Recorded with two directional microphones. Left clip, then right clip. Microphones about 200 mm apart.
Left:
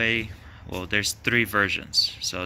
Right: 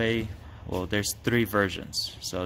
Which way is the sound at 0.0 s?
20° right (ahead or behind).